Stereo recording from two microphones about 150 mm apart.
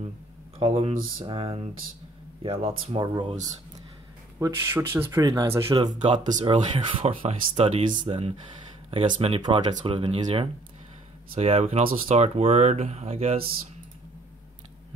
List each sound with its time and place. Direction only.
0.6 s speech: 40° right (ahead or behind)
4.4 s speech: 15° right (ahead or behind)
5.9 s speech: 35° right (ahead or behind)